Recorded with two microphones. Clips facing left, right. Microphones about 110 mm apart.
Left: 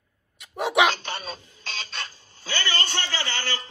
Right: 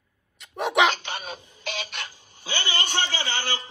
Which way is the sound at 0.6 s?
10° left (ahead or behind).